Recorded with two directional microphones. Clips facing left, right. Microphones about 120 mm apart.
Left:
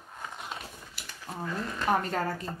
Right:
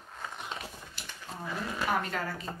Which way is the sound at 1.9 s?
40° left (ahead or behind).